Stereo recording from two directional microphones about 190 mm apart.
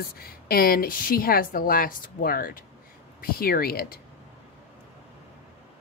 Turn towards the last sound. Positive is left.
turn(degrees=50)  # may be behind; listen again after turning